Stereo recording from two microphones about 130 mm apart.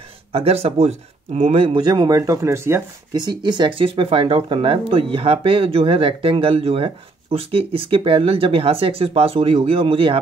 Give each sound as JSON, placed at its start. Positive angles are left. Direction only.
{"t": 0.3, "sound": "speech", "side_deg": -50}
{"t": 1.8, "sound": "speech", "side_deg": -35}
{"t": 3.2, "sound": "speech", "side_deg": -35}